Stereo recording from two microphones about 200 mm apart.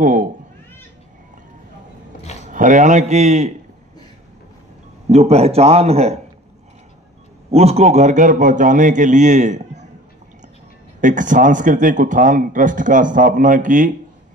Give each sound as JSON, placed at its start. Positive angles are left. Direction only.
{"t": 0.0, "sound": "speech", "side_deg": -40}
{"t": 2.5, "sound": "speech", "side_deg": -40}
{"t": 5.1, "sound": "speech", "side_deg": -30}
{"t": 7.5, "sound": "speech", "side_deg": -30}
{"t": 11.0, "sound": "speech", "side_deg": -40}